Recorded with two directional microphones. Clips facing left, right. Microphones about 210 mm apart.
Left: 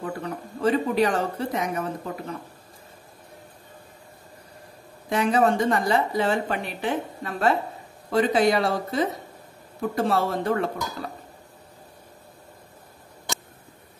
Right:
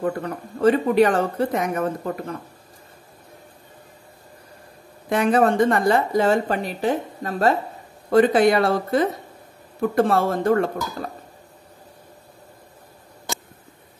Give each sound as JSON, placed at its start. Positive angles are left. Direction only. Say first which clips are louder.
{"t": 0.6, "sound": "speech", "louder": "right 5 dB", "side_deg": -55}
{"t": 5.1, "sound": "speech", "louder": "right 3 dB", "side_deg": -55}
{"t": 8.1, "sound": "speech", "louder": "right 5 dB", "side_deg": -55}